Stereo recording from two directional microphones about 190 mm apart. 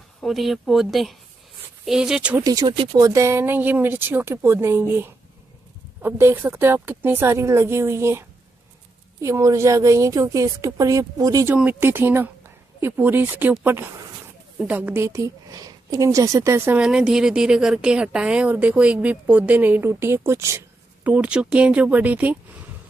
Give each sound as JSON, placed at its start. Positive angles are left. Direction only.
{"t": 0.2, "sound": "speech", "side_deg": 0}
{"t": 2.4, "sound": "a woman's voice", "side_deg": -20}